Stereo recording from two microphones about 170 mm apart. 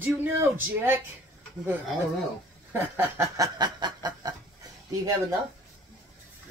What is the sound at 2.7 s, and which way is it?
Snicker, 15° right (ahead or behind).